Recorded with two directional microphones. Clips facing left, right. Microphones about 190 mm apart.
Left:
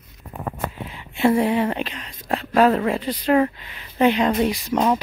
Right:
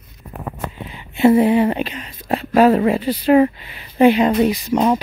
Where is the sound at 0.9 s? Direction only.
Centre (ahead or behind).